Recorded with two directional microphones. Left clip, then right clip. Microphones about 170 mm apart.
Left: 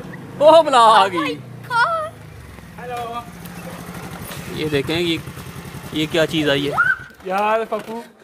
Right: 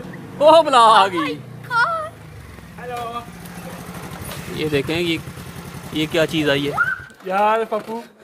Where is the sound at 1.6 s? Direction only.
35° left (ahead or behind).